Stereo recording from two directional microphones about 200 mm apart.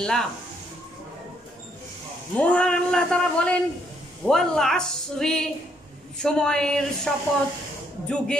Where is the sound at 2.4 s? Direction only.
5° left (ahead or behind).